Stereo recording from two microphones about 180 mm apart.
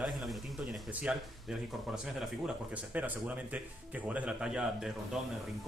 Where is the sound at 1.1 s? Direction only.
5° right (ahead or behind).